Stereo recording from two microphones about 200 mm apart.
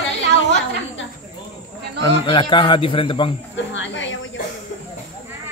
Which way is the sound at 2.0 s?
25° left (ahead or behind).